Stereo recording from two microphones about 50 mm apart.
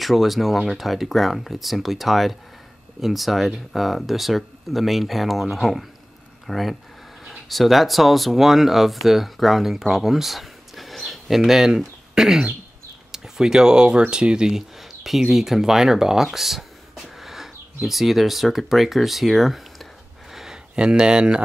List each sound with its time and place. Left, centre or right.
0.0 s speech: centre
20.7 s speech: centre